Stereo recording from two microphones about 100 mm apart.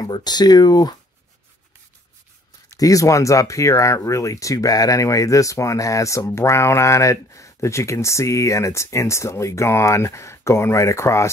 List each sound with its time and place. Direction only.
0.0 s speech: 45° left (ahead or behind)
2.8 s speech: 35° left (ahead or behind)